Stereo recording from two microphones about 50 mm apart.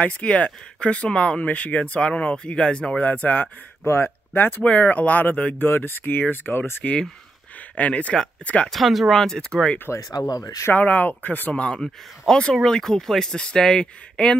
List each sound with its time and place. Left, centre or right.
0.0 s speech: left
4.0 s speech: left
5.6 s speech: left
6.8 s speech: left
8.6 s speech: centre
9.1 s speech: centre
9.9 s speech: right
10.7 s speech: left
11.5 s speech: left
11.8 s speech: centre